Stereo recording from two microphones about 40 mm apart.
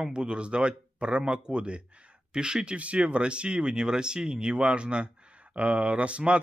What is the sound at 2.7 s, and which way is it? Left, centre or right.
Speech, right.